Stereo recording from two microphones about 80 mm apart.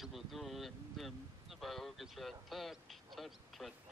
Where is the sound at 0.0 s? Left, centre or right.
Centre.